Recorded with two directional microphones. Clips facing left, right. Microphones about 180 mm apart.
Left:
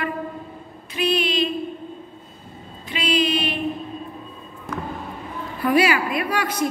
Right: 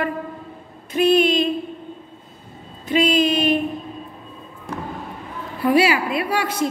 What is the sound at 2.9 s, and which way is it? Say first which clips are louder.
Speech: right 5 dB; 45° right (ahead or behind).